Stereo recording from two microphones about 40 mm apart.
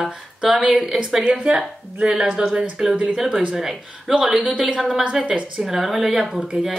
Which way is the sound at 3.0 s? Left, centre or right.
Centre.